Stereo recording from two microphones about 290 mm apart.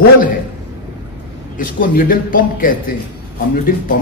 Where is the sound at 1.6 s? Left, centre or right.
Left.